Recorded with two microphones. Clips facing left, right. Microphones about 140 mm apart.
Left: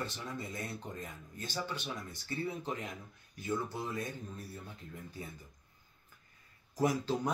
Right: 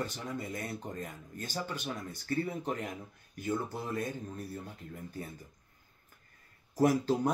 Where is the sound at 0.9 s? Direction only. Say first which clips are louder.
Right 4 dB; 50° right (ahead or behind).